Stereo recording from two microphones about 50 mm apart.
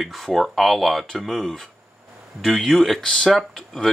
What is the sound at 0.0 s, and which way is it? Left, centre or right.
Speech, centre.